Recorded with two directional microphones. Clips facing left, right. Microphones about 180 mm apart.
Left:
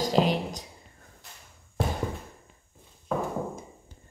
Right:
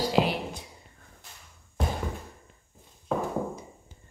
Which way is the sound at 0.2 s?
5° right (ahead or behind).